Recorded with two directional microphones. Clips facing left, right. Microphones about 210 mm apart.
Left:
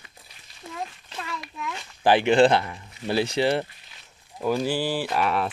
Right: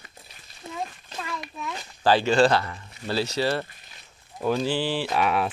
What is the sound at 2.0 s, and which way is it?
Speech, 20° left (ahead or behind).